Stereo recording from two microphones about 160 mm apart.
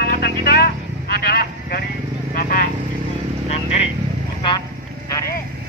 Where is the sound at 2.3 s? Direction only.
55° left (ahead or behind).